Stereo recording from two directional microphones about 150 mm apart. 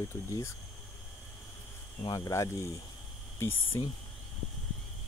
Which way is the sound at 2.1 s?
25° left (ahead or behind).